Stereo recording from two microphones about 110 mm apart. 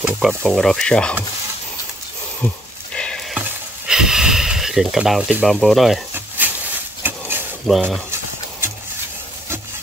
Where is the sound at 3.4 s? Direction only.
5° right (ahead or behind).